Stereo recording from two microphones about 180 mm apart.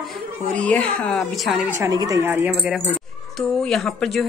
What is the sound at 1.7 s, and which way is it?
Speech, 15° right (ahead or behind).